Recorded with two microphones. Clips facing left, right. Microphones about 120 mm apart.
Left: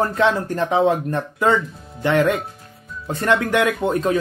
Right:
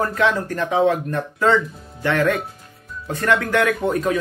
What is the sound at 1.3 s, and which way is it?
Speech, 15° left (ahead or behind).